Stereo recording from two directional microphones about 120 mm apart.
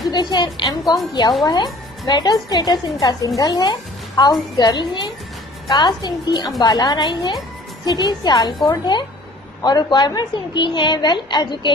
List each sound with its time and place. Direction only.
0.0 s a woman's voice: 35° left (ahead or behind)